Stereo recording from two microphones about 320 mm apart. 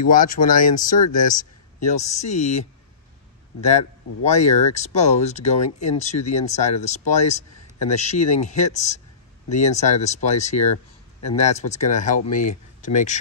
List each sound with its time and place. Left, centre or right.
0.0 s speech: left
3.6 s speech: left